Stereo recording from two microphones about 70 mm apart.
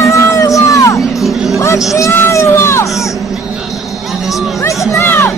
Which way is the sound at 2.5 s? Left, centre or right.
Left.